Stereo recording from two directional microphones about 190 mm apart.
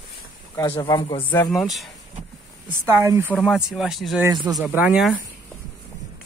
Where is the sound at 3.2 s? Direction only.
Centre (ahead or behind).